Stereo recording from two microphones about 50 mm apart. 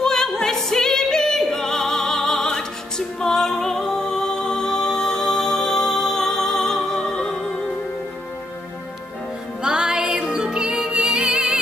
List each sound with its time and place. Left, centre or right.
0.0 s music: centre
9.6 s music: centre